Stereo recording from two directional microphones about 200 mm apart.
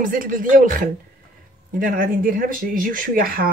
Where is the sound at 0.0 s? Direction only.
45° right (ahead or behind).